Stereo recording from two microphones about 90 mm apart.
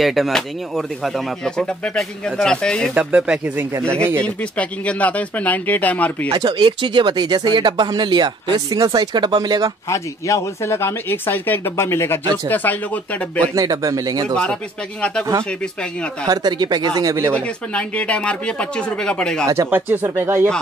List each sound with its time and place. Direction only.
0.0 s speech: centre (ahead or behind)
2.9 s speech: 10° right (ahead or behind)
3.5 s speech: 30° right (ahead or behind)
4.2 s speech: 15° left (ahead or behind)
6.3 s speech: 60° right (ahead or behind)
9.8 s speech: 35° left (ahead or behind); by 13.2 s 20° left (ahead or behind)
13.6 s speech: 40° right (ahead or behind)
14.3 s speech: 10° left (ahead or behind)
16.3 s speech: 50° right (ahead or behind)
17.7 s speech: 15° left (ahead or behind)
19.7 s speech: 20° right (ahead or behind)